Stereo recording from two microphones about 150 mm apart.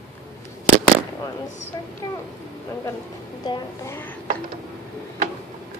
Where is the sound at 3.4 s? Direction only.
30° left (ahead or behind).